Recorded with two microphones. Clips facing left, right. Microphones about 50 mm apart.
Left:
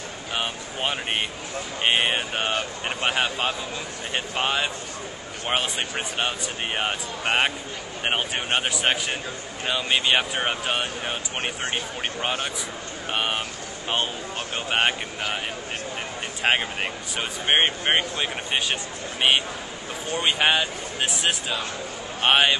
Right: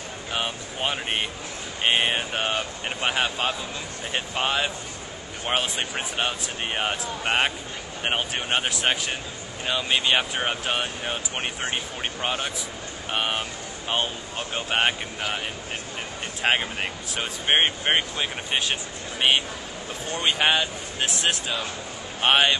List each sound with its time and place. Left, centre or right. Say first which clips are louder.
0.3 s speech: even; centre
14.5 s speech: even; centre
16.4 s speech: left 1 dB; centre
20.1 s speech: left 1 dB; centre